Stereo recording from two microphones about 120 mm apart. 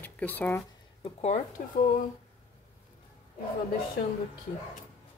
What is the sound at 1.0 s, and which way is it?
Speech, 60° left (ahead or behind).